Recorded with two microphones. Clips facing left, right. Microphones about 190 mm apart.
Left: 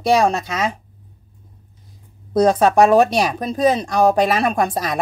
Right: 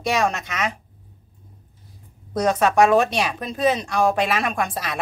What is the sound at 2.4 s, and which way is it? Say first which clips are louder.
Speech: left 4 dB; 30° left (ahead or behind).